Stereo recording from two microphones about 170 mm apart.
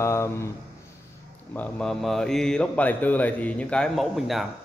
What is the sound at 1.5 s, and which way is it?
Speech, 5° left (ahead or behind).